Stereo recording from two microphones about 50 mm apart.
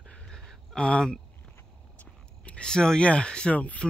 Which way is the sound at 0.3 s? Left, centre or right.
Centre.